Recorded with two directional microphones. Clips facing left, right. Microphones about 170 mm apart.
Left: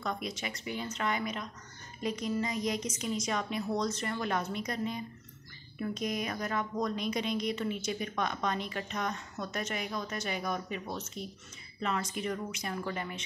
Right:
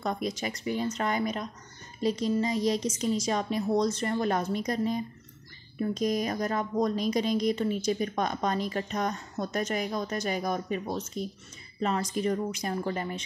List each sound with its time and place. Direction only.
0.0 s a woman's voice: 35° right (ahead or behind)